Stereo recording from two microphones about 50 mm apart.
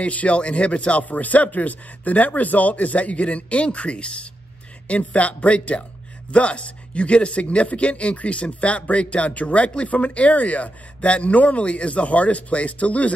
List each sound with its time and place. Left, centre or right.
0.0 s speech: left